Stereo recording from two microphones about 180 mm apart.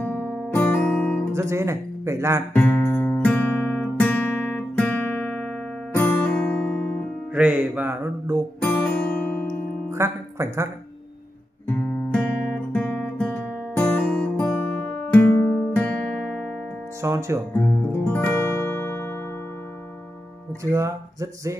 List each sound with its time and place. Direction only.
0.0 s guitar: 10° left (ahead or behind)
1.3 s speech: 15° right (ahead or behind)
2.5 s music: 5° left (ahead or behind)
7.3 s music: 5° right (ahead or behind)
8.6 s music: 10° left (ahead or behind)
9.8 s speech: 15° right (ahead or behind)
11.7 s guitar: 5° left (ahead or behind)
17.0 s speech: 15° right (ahead or behind)
17.6 s music: 10° left (ahead or behind)
20.7 s music: 15° right (ahead or behind)